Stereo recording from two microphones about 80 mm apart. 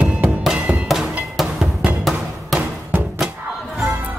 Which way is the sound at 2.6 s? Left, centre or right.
Right.